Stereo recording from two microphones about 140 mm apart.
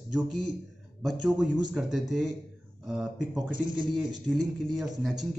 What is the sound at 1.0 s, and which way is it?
A man's voice, 5° right (ahead or behind).